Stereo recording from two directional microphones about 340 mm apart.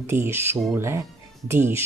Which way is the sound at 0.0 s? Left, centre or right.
Centre.